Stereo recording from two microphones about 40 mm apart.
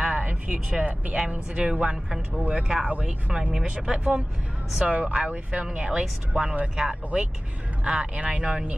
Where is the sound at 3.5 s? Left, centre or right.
Centre.